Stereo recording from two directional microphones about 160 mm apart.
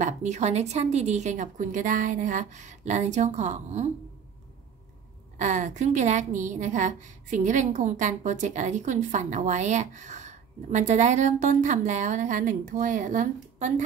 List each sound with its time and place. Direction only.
0.0 s a woman's voice: 45° right (ahead or behind)
5.4 s a woman's voice: 50° right (ahead or behind)